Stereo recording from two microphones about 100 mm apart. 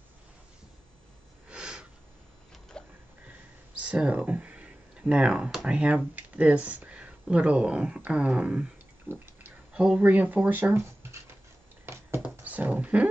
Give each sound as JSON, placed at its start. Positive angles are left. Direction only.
{"t": 1.5, "sound": "sniff", "side_deg": -10}
{"t": 2.8, "sound": "a sound", "side_deg": 10}
{"t": 3.8, "sound": "speech", "side_deg": -10}
{"t": 9.1, "sound": "pig", "side_deg": -20}
{"t": 9.7, "sound": "speech", "side_deg": -10}
{"t": 12.2, "sound": "beatboxing", "side_deg": -15}